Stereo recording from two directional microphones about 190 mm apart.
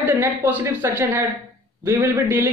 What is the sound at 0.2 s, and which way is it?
A man's voice, 10° right (ahead or behind).